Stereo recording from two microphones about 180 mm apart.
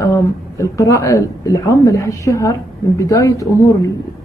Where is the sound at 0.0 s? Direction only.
15° left (ahead or behind).